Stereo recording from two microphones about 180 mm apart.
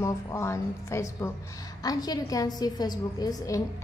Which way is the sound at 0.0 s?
15° left (ahead or behind).